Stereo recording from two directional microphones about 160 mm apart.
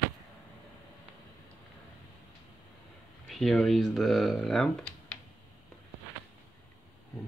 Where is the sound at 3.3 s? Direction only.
Centre (ahead or behind).